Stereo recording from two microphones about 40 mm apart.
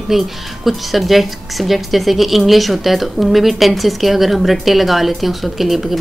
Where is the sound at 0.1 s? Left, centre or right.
Centre.